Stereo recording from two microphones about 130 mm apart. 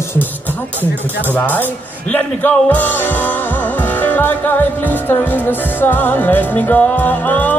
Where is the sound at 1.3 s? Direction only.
15° left (ahead or behind).